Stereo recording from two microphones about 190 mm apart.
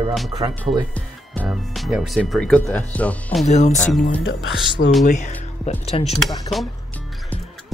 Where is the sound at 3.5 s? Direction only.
40° left (ahead or behind).